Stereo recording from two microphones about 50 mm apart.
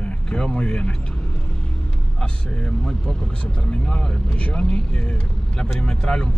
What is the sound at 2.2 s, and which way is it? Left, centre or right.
Speech, centre.